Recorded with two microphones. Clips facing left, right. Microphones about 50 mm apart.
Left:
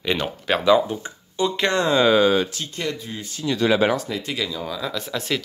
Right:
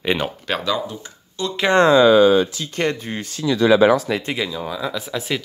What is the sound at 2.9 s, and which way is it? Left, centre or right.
Speech, right.